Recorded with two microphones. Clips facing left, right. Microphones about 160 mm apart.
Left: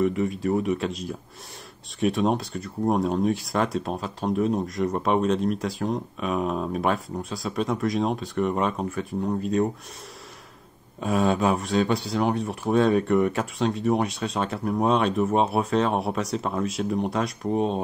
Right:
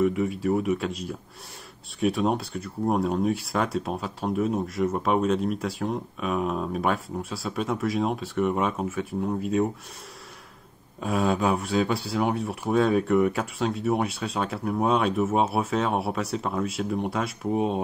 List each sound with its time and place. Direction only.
0.0 s speech: centre (ahead or behind)
11.0 s speech: centre (ahead or behind)